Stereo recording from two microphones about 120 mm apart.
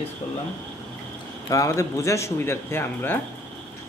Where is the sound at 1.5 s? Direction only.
30° left (ahead or behind).